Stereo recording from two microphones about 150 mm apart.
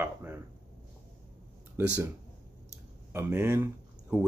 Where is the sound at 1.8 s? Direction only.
15° right (ahead or behind).